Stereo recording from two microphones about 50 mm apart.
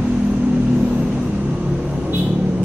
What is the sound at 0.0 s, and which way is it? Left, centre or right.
Vehicle, centre.